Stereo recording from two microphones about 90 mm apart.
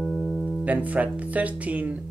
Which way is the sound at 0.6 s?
15° right (ahead or behind).